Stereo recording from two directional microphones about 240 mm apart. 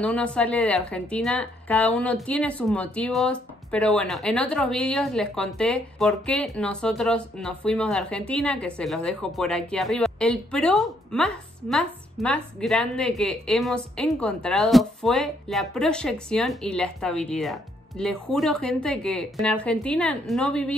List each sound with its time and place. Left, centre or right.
0.0 s a woman's voice: centre